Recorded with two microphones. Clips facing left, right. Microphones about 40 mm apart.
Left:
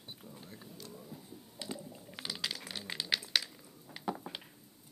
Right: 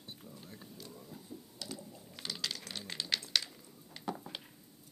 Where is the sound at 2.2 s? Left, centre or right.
Centre.